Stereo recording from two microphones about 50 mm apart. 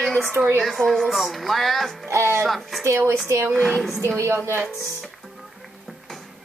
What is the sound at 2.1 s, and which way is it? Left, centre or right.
Speech, right.